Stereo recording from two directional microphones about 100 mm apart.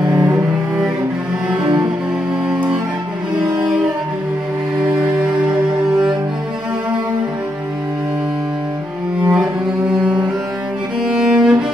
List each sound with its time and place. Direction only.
0.0 s cello: 40° right (ahead or behind)
2.5 s music: 10° right (ahead or behind)
3.4 s cello: 15° right (ahead or behind)
9.2 s cello: 10° right (ahead or behind)
11.1 s music: 10° right (ahead or behind)